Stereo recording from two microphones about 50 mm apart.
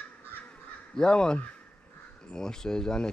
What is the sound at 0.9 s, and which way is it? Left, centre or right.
Speech, centre.